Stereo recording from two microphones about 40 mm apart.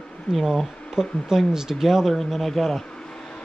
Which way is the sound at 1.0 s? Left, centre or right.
Centre.